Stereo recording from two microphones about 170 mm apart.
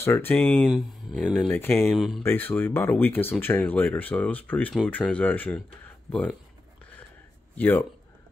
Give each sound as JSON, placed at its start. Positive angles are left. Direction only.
{"t": 0.0, "sound": "speech", "side_deg": 15}
{"t": 1.3, "sound": "speech", "side_deg": 10}
{"t": 1.9, "sound": "speech", "side_deg": 0}
{"t": 2.2, "sound": "speech", "side_deg": 10}
{"t": 7.5, "sound": "speech", "side_deg": 10}